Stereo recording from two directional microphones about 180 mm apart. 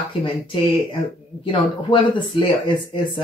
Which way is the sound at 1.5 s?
25° left (ahead or behind).